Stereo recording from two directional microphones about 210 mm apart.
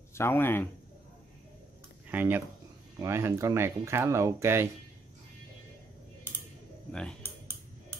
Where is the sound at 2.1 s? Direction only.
10° right (ahead or behind).